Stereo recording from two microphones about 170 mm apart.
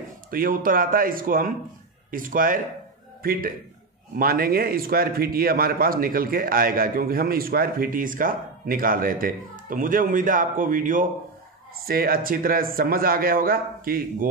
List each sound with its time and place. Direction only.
0.3 s a man's voice: 55° right (ahead or behind)